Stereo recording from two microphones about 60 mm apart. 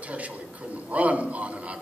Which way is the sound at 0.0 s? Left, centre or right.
Right.